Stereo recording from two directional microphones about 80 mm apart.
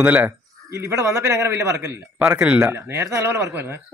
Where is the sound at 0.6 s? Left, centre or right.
Right.